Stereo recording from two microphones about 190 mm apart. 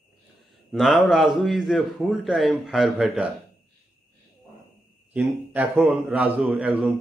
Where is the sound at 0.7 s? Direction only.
Centre (ahead or behind).